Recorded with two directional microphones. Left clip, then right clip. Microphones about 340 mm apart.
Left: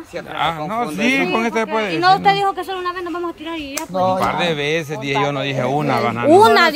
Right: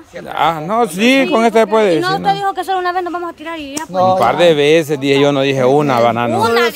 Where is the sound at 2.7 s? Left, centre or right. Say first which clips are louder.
Right 8 dB; centre.